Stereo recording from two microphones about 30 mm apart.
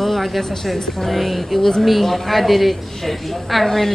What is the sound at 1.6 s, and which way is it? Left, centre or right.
A woman's voice, centre.